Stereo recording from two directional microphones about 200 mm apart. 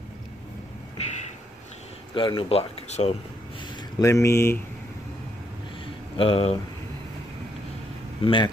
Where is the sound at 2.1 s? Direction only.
25° left (ahead or behind).